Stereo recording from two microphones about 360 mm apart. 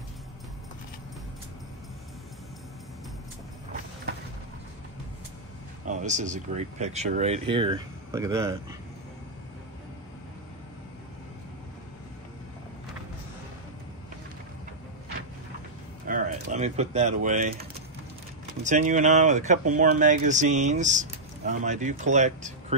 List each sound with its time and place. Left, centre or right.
5.9 s speech: centre
16.1 s speech: right